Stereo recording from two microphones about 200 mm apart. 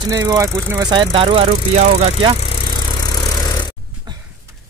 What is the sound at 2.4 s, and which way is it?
Vehicle, 25° left (ahead or behind).